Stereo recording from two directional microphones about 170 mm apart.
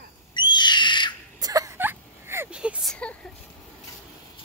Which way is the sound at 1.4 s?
20° right (ahead or behind).